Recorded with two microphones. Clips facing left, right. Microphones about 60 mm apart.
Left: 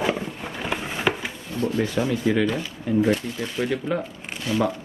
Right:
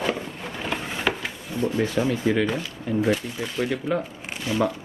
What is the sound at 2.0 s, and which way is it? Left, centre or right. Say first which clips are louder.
Speech: even; right.